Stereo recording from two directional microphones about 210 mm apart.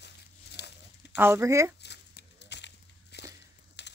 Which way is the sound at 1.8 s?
55° left (ahead or behind).